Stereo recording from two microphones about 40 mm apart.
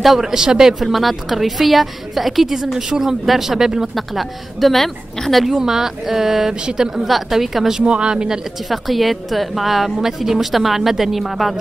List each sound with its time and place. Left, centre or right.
0.0 s a man's voice: centre
0.3 s a woman's voice: centre
3.9 s a woman's voice: centre
5.5 s a woman's voice: centre
7.8 s speech: right
8.6 s a woman's voice: centre